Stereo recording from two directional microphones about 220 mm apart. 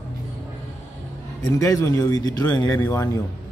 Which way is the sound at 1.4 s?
15° left (ahead or behind).